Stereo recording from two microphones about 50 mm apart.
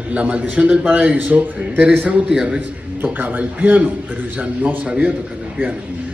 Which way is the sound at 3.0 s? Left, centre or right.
Right.